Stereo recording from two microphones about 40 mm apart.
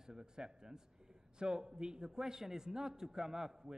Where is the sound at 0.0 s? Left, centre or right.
Centre.